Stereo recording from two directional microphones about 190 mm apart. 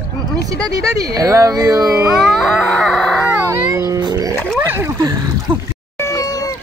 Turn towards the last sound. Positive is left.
turn(degrees=15)  # may be behind; listen again after turning